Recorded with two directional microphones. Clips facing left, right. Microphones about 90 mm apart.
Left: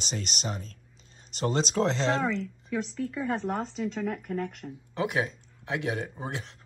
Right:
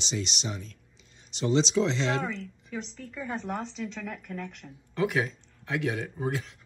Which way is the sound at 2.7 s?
50° left (ahead or behind).